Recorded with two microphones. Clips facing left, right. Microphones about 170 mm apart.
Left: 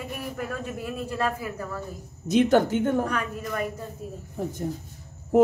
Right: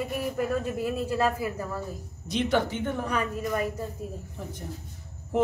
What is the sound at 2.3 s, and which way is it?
Speech, 45° left (ahead or behind).